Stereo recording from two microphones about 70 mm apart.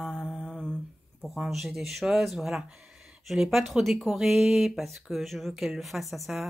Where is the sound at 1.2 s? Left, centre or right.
Centre.